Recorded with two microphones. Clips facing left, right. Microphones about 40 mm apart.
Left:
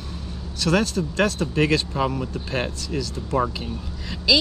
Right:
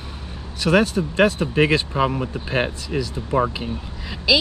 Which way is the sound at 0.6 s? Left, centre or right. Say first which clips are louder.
Right 4 dB; centre.